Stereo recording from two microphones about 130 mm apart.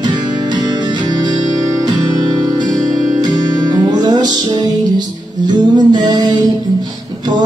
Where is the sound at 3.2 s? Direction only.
30° right (ahead or behind).